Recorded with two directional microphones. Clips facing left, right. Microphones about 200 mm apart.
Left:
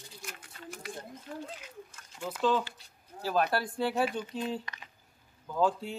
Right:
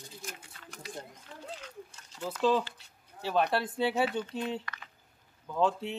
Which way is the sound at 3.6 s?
25° right (ahead or behind).